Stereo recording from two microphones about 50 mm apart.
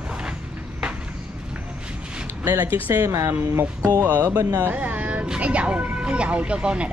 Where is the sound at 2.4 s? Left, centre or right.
Right.